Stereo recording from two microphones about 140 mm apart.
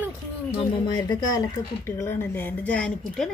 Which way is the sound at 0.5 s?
35° left (ahead or behind).